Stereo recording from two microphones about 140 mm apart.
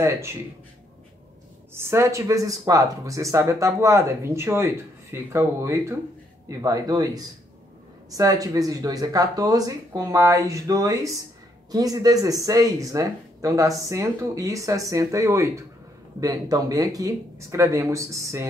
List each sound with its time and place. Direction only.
0.0 s speech: 20° right (ahead or behind)
1.7 s speech: 20° right (ahead or behind)